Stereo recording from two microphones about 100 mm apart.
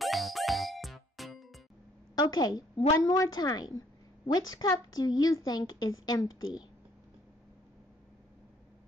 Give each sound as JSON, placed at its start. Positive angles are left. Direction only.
{"t": 0.0, "sound": "music", "side_deg": 0}
{"t": 2.1, "sound": "a woman's voice", "side_deg": 40}